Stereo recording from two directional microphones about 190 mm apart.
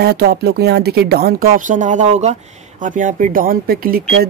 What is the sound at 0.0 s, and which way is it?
Speech, 55° right (ahead or behind).